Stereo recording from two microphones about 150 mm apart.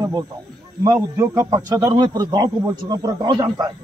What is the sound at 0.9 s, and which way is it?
A man's voice, 20° right (ahead or behind).